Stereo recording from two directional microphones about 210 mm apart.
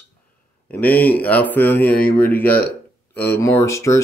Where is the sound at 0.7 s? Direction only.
10° left (ahead or behind).